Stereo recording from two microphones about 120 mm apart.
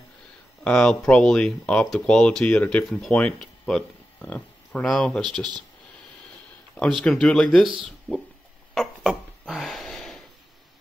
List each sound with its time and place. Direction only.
0.7 s speech: 5° left (ahead or behind)
6.8 s speech: 5° left (ahead or behind)
8.7 s a sound: centre (ahead or behind)